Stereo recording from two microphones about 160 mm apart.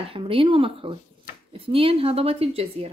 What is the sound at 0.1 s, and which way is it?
A woman's voice, 35° right (ahead or behind).